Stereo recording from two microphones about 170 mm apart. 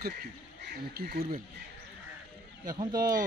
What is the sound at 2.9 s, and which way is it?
Speech, 55° right (ahead or behind).